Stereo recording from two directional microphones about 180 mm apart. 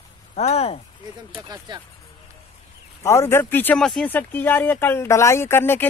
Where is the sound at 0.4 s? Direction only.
35° left (ahead or behind).